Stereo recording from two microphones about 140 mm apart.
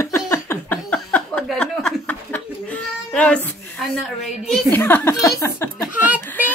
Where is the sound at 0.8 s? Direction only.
5° left (ahead or behind).